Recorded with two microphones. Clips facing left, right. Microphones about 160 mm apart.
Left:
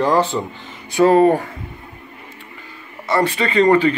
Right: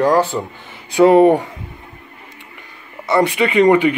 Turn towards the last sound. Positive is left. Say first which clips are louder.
# right 2 dB
turn(degrees=-15)  # may be behind; listen again after turning